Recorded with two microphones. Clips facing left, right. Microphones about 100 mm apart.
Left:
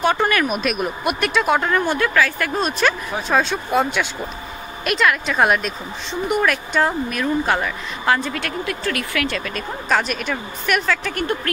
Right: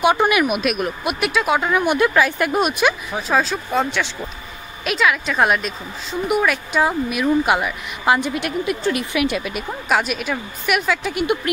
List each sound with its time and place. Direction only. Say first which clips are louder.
0.0 s speech: right 2 dB; 15° right (ahead or behind)
2.0 s speech: right 2 dB; 20° right (ahead or behind)
3.1 s speech: even; centre (ahead or behind)